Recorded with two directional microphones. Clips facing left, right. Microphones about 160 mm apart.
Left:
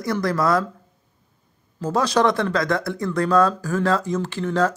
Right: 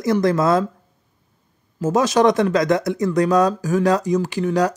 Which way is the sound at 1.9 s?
20° right (ahead or behind).